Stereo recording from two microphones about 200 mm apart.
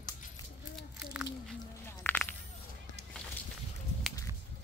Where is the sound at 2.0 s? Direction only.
10° left (ahead or behind).